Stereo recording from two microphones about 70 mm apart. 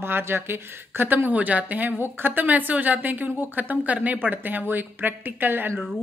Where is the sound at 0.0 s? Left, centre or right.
Right.